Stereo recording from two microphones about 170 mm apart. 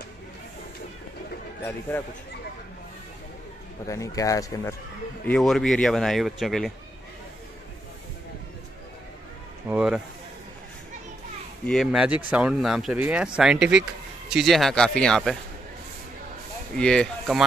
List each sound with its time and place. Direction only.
1.9 s speech: 10° left (ahead or behind)
3.8 s speech: 20° left (ahead or behind)
5.2 s speech: 5° left (ahead or behind)
9.7 s speech: 5° right (ahead or behind)
11.6 s speech: centre (ahead or behind)
16.7 s speech: 5° left (ahead or behind)